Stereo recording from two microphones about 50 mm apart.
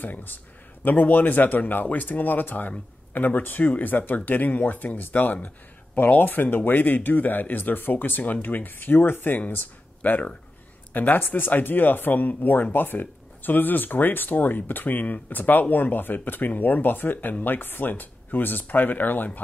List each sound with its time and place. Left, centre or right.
0.0 s speech: left